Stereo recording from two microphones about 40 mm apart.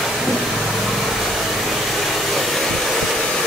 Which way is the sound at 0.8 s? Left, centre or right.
Centre.